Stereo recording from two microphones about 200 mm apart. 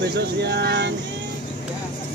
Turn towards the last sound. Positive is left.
turn(degrees=-55)  # may be behind; listen again after turning